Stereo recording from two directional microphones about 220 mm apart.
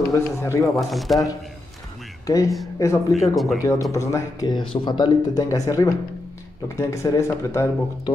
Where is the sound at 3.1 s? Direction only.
Centre (ahead or behind).